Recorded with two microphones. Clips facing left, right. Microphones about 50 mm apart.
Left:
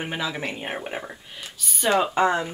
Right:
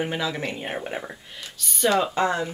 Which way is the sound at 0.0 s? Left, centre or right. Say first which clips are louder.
Right 2 dB; centre.